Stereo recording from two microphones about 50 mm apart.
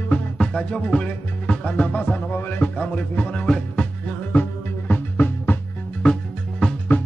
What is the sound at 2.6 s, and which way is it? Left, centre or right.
Music, left.